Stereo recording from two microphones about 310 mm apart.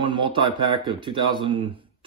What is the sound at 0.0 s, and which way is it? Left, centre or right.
Speech, centre.